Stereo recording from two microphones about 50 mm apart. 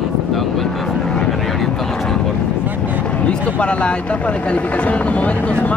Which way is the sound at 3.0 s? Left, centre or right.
Left.